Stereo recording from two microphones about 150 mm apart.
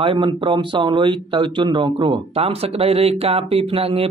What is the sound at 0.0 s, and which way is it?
Speech, 30° right (ahead or behind).